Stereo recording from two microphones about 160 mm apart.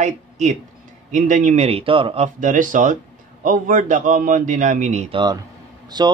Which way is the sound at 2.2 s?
55° right (ahead or behind).